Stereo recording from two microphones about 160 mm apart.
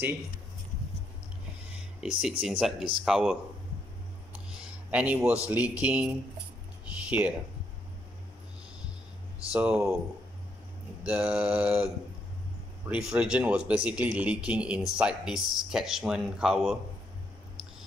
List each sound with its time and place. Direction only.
2.0 s speech: 5° right (ahead or behind)
4.5 s speech: 5° right (ahead or behind)
9.5 s speech: 10° right (ahead or behind)
11.1 s speech: 5° right (ahead or behind)